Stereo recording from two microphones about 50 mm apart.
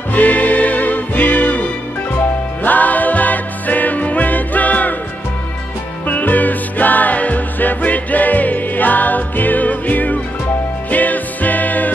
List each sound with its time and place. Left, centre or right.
0.1 s music: left
6.0 s music: left